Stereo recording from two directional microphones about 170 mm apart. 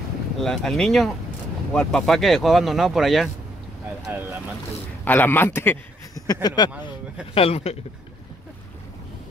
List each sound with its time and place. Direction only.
0.4 s speech: centre (ahead or behind)
5.0 s a man's voice: 10° left (ahead or behind)
7.3 s speech: 35° left (ahead or behind)